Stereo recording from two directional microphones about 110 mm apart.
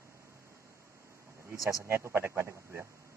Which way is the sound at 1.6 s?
30° left (ahead or behind).